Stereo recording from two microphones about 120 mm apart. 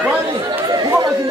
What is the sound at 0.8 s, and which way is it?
Chatter, 25° right (ahead or behind).